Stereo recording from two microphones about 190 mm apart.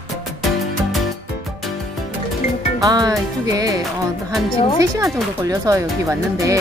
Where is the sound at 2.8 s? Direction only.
20° right (ahead or behind).